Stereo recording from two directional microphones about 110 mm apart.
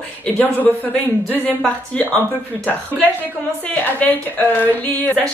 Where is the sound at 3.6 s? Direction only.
15° left (ahead or behind).